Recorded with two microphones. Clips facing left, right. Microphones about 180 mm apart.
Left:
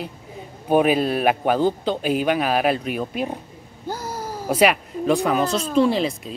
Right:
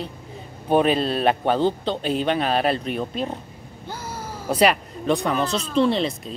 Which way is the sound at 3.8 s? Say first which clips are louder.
Left 5 dB; 40° left (ahead or behind).